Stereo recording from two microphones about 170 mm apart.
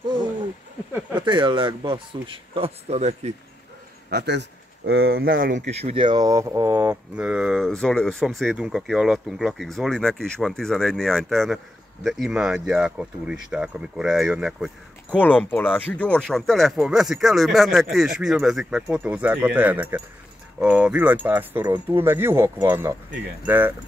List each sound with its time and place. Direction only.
1.1 s speech: 30° right (ahead or behind)
4.1 s a man's voice: 80° right; by 5.6 s 60° right (ahead or behind)
5.7 s speech: 40° right (ahead or behind); by 23.7 s 10° right (ahead or behind)